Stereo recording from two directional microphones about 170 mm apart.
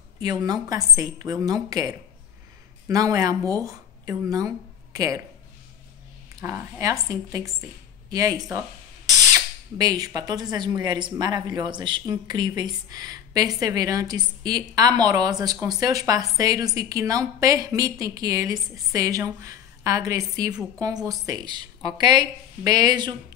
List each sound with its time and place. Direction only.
0.2 s speech: 25° right (ahead or behind)
6.4 s speech: 15° right (ahead or behind)